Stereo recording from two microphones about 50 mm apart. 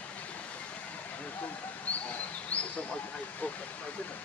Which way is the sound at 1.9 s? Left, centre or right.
Left.